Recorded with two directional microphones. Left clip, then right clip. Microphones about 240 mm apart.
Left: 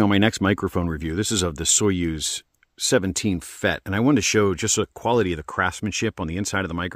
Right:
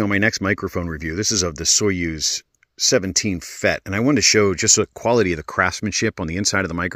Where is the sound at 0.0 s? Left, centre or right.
Centre.